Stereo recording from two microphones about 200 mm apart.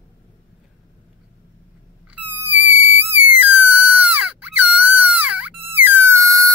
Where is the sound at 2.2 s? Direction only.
10° right (ahead or behind).